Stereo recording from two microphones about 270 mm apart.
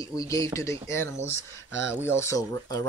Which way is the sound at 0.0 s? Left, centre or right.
Centre.